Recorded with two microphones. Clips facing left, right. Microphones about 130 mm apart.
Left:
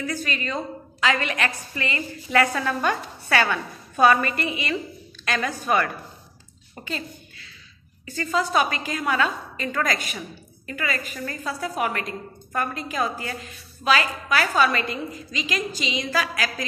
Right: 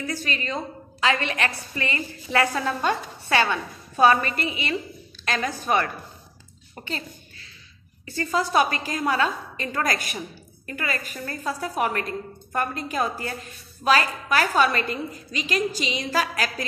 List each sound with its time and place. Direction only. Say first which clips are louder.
0.0 s a woman's voice: left 1 dB; 35° right (ahead or behind)
8.0 s a woman's voice: even; 35° right (ahead or behind)